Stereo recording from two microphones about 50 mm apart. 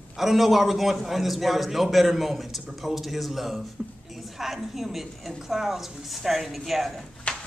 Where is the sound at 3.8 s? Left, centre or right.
Right.